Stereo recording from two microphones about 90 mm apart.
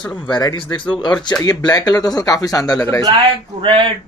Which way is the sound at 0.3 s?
50° left (ahead or behind).